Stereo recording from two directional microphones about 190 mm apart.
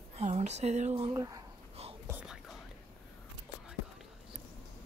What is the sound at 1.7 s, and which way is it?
Whispering, 30° right (ahead or behind).